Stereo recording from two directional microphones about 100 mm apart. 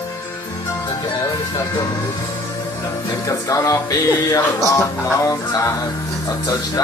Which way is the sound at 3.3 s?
35° left (ahead or behind).